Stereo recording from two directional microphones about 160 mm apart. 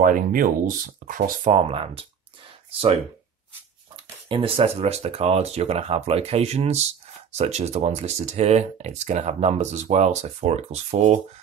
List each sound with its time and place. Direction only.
0.0 s speech: 60° right (ahead or behind)
1.5 s speech: 35° right (ahead or behind)
3.9 s speech: 35° right (ahead or behind)